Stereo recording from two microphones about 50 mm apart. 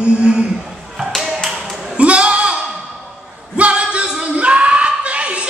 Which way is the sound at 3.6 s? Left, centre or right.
Right.